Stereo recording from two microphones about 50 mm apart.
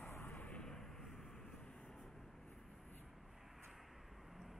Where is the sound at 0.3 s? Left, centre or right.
Left.